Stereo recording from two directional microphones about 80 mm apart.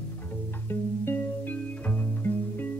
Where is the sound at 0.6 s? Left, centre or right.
Left.